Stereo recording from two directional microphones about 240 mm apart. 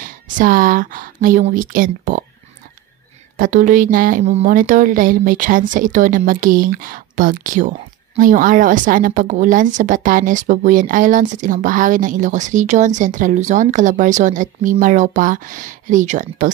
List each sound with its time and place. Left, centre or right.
0.0 s a woman's voice: right
3.3 s a woman's voice: right